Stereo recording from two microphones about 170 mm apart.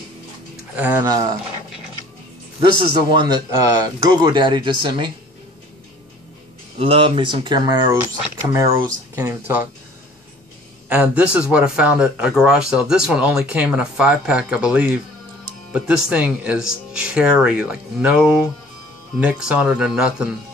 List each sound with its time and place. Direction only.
0.7 s speech: 10° right (ahead or behind)
1.0 s a man's voice: 20° right (ahead or behind)
2.6 s a man's voice: 30° right (ahead or behind)
6.8 s a man's voice: 35° right (ahead or behind); by 9.7 s 10° right (ahead or behind)
10.9 s speech: 10° right (ahead or behind)